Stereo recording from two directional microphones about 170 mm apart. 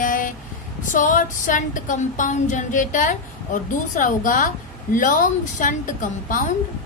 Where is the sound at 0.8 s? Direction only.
50° left (ahead or behind).